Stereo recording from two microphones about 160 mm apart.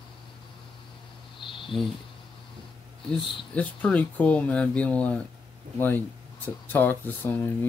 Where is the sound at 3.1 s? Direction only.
10° left (ahead or behind).